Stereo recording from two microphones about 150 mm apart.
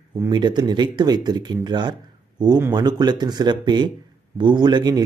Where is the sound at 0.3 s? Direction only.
30° right (ahead or behind).